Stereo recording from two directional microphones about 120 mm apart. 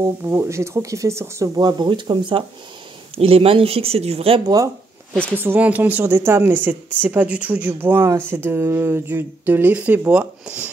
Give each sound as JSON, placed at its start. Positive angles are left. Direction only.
{"t": 0.0, "sound": "speech", "side_deg": -20}
{"t": 1.6, "sound": "speech", "side_deg": -40}
{"t": 3.2, "sound": "speech", "side_deg": -55}
{"t": 5.3, "sound": "speech", "side_deg": -15}